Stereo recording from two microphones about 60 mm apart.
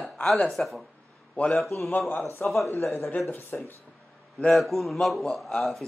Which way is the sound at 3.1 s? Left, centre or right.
Left.